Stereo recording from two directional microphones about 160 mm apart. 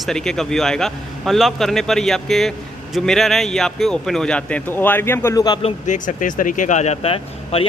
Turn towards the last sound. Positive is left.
turn(degrees=40)  # may be behind; listen again after turning